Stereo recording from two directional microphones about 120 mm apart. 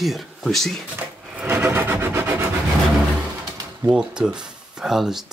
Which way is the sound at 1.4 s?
20° right (ahead or behind).